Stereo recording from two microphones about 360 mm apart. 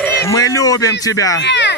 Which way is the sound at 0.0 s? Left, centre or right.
Centre.